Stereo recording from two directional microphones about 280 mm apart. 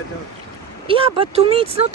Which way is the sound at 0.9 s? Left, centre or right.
Centre.